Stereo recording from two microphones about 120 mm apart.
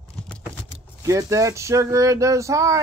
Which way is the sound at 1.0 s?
30° right (ahead or behind).